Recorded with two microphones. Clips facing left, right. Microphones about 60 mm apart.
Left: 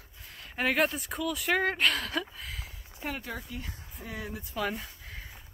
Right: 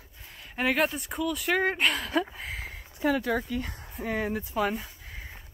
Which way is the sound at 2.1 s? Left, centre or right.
Right.